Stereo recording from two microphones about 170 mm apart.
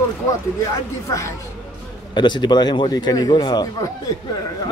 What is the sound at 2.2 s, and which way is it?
Speech, 25° left (ahead or behind).